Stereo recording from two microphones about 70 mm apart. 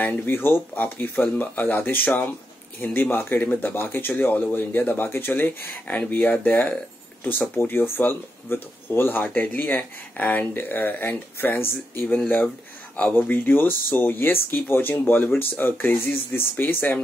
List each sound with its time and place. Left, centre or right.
0.0 s speech: left
13.3 s speech: left